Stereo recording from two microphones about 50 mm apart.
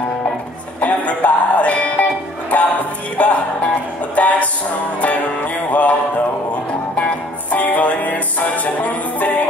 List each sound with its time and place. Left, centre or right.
0.7 s music: left
7.0 s music: left